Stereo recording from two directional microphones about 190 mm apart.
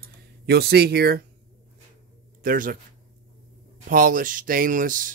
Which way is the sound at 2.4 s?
45° right (ahead or behind).